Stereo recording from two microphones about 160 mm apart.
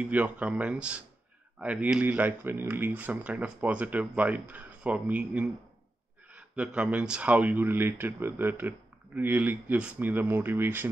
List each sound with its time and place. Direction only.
0.0 s speech: 10° right (ahead or behind)